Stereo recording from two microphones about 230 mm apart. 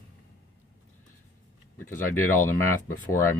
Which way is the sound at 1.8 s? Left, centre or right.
Centre.